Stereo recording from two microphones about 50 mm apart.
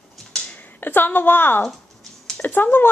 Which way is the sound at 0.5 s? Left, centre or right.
Left.